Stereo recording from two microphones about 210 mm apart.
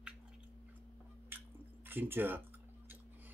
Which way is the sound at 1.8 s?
10° right (ahead or behind).